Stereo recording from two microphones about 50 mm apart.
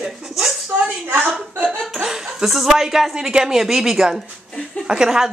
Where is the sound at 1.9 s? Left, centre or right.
Centre.